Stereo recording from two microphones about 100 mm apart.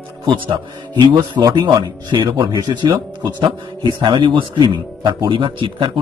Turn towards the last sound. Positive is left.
turn(degrees=-55)  # may be behind; listen again after turning